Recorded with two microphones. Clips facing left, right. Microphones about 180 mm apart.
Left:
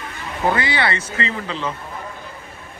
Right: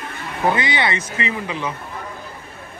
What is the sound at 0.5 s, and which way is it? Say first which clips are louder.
Speech: even; 20° right (ahead or behind).